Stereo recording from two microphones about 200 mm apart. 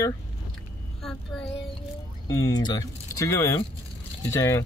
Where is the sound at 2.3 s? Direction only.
15° left (ahead or behind).